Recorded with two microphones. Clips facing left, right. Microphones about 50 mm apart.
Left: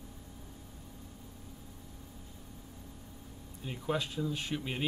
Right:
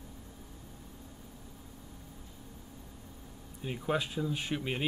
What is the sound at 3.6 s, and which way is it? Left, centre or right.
Speech, centre.